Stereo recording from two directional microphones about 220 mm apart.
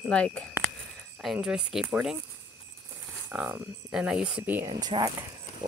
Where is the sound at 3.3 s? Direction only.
5° right (ahead or behind).